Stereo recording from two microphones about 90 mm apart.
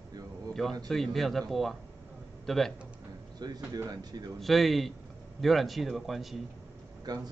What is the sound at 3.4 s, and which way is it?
Speech, 45° right (ahead or behind).